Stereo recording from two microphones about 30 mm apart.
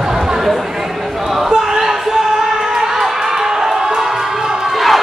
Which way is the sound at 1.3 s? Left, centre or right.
Centre.